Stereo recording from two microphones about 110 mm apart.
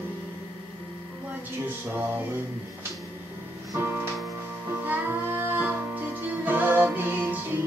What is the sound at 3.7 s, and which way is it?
Music, 20° right (ahead or behind).